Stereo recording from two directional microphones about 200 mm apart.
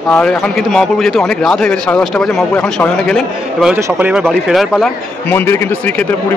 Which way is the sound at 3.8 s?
10° right (ahead or behind).